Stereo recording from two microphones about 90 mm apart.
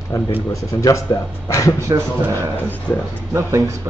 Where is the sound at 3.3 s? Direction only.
30° right (ahead or behind).